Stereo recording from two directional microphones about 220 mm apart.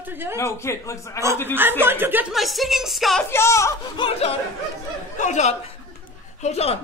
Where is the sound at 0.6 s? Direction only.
10° left (ahead or behind).